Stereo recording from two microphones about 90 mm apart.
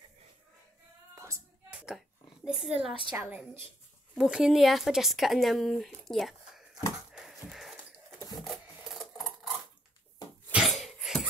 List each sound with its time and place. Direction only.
1.1 s music: 30° right (ahead or behind)
1.7 s a sound: 10° right (ahead or behind)
4.2 s speech: 5° right (ahead or behind)
7.1 s horse: 5° right (ahead or behind)
8.5 s filing: centre (ahead or behind)
10.5 s a sound: 5° right (ahead or behind)